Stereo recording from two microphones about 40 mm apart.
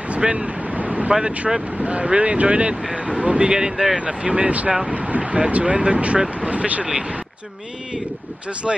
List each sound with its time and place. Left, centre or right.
0.2 s speech: right
0.7 s vehicle: right
1.5 s speech: centre
1.8 s speech: right
3.7 s speech: centre
4.0 s speech: right
6.8 s speech: centre
8.7 s speech: centre